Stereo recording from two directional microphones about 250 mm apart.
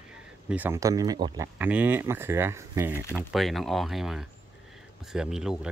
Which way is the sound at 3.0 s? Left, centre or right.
Centre.